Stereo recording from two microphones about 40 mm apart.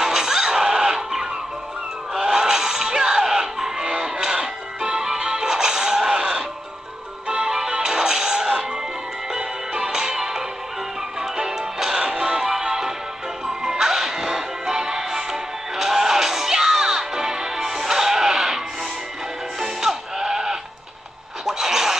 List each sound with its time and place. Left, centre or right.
0.0 s music: centre
19.6 s music: centre
21.5 s a sound: centre